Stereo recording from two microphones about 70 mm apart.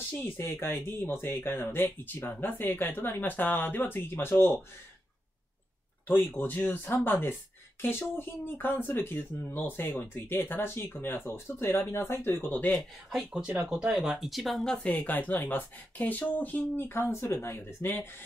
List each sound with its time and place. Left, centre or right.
0.4 s speech: left
6.0 s speech: left
13.1 s speech: centre
14.9 s speech: left